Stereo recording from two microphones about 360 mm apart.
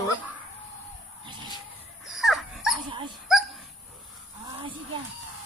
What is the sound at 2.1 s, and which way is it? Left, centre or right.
Dog, centre.